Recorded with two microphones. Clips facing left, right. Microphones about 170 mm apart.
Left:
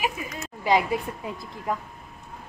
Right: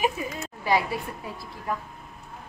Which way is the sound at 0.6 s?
20° left (ahead or behind).